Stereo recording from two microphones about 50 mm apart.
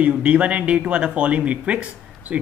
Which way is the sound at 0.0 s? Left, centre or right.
Right.